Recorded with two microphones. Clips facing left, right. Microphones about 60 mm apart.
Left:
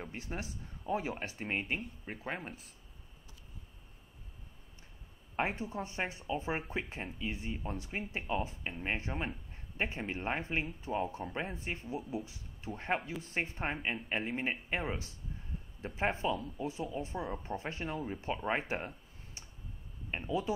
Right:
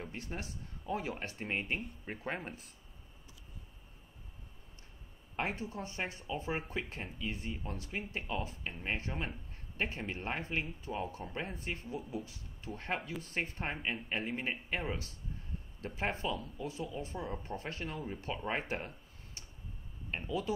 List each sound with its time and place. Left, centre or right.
0.0 s speech: centre
5.3 s speech: left